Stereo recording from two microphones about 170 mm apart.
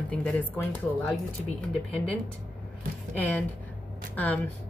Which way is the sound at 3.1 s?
10° left (ahead or behind).